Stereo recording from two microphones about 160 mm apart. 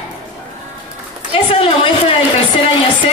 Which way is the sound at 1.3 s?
35° left (ahead or behind).